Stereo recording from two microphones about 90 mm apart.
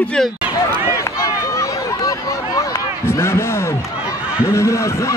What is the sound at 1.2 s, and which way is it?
Run, 35° left (ahead or behind).